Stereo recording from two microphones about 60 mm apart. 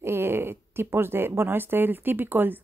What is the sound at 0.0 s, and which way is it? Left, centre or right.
A woman's voice, right.